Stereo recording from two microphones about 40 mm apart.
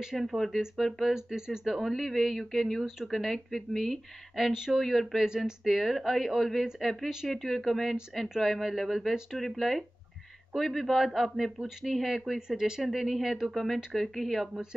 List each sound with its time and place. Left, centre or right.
0.0 s speech: centre
1.1 s speech: centre
1.7 s speech: centre
12.4 s speech: centre